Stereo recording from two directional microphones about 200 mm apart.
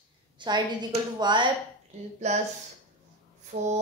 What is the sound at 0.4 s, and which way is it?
Speech, 20° right (ahead or behind).